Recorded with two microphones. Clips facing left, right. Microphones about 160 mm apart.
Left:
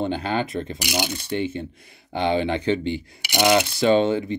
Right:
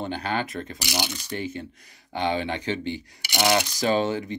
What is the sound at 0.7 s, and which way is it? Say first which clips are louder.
Speech: left 2 dB; 50° left (ahead or behind).